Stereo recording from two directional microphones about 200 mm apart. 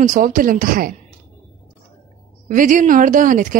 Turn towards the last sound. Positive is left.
turn(degrees=-40)  # may be behind; listen again after turning